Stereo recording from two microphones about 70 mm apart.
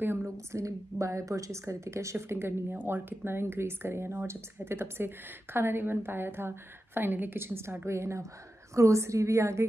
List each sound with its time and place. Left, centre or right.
0.5 s a woman's voice: right